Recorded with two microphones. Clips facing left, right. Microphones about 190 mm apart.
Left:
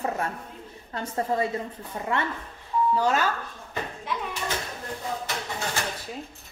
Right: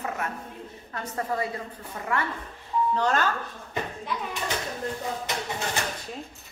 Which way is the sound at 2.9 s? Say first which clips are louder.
Even; 10° left (ahead or behind).